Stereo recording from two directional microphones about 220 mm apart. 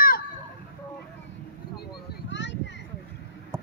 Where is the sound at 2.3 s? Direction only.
55° left (ahead or behind).